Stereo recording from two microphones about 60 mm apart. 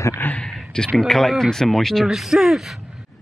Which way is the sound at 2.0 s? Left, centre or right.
Centre.